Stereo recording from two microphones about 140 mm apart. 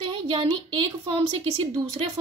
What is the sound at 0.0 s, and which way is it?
Speech, 40° right (ahead or behind).